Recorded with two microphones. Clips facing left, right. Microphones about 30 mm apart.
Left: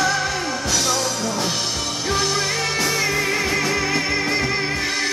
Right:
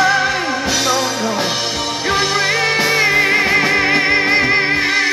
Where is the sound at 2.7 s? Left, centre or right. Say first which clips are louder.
Right 7 dB; right.